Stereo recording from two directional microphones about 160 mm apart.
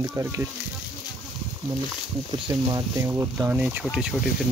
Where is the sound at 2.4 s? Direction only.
20° right (ahead or behind); by 3.8 s 5° right (ahead or behind).